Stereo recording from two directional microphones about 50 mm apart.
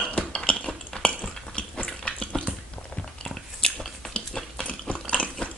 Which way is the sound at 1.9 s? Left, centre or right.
Centre.